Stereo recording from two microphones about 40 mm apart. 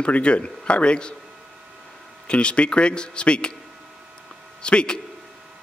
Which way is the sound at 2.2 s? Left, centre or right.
Left.